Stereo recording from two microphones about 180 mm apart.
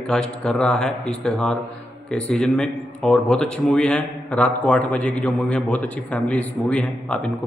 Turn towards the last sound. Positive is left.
turn(degrees=5)  # may be behind; listen again after turning